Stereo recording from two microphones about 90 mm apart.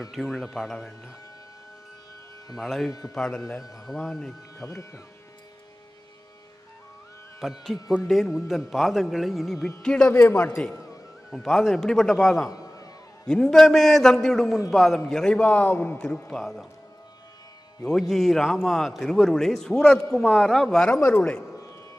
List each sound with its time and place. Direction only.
0.0 s a man's voice: centre (ahead or behind)
2.5 s a man's voice: centre (ahead or behind)
4.6 s speech: 35° left (ahead or behind)
7.3 s a man's voice: 5° right (ahead or behind); by 16.0 s 20° left (ahead or behind)
16.0 s a man's voice: 5° left (ahead or behind)
17.8 s a man's voice: 5° left (ahead or behind)